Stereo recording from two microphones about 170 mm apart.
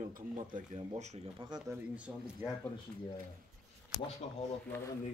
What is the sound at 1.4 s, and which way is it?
Speech, 30° right (ahead or behind).